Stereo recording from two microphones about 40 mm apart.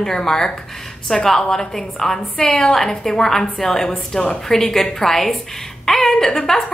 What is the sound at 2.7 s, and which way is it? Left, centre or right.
A woman's voice, centre.